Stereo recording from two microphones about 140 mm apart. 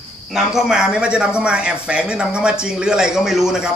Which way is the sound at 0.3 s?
Centre (ahead or behind).